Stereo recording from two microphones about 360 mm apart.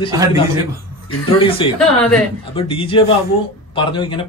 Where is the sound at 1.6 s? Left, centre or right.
Centre.